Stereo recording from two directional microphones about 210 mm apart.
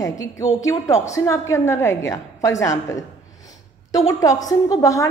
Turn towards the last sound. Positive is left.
turn(degrees=15)  # may be behind; listen again after turning